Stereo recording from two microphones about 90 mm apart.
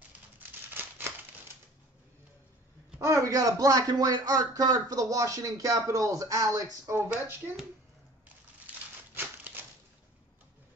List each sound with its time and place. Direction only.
0.7 s crumpling: 20° right (ahead or behind)
3.0 s speech: 35° right (ahead or behind)
7.0 s speech: 20° right (ahead or behind)
8.6 s a sound: 15° right (ahead or behind)